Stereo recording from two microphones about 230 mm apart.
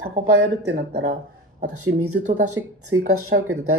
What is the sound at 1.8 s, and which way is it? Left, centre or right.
Speech, right.